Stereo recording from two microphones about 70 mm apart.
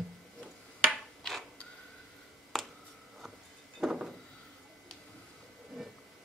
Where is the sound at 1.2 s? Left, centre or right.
Centre.